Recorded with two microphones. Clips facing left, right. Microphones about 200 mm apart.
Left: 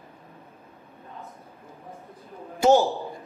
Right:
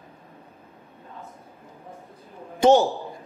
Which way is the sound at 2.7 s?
Centre (ahead or behind).